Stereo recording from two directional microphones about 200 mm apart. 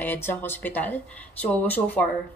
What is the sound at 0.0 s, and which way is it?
Speech, 10° left (ahead or behind).